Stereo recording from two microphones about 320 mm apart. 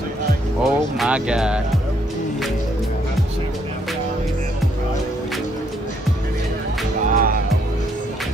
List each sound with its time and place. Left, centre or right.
0.7 s speech: centre
7.1 s music: right